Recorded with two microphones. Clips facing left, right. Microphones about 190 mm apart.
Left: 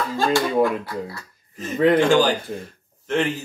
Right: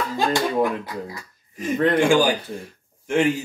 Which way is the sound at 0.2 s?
15° right (ahead or behind).